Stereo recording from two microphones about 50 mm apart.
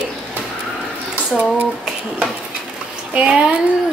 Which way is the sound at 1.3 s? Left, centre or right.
Centre.